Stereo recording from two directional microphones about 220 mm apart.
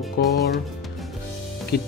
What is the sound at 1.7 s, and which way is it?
Speech, 45° left (ahead or behind).